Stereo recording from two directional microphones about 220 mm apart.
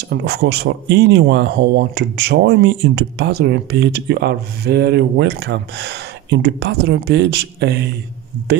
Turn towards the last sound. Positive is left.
turn(degrees=-50)  # may be behind; listen again after turning